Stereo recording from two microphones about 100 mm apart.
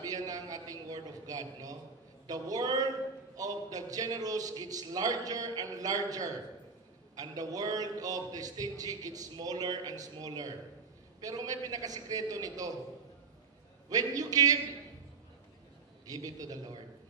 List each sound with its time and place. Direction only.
0.0 s a sound: 40° right (ahead or behind)
2.2 s a man's voice: 40° right (ahead or behind)
13.8 s a man's voice: 35° right (ahead or behind)
16.1 s a man's voice: 40° right (ahead or behind)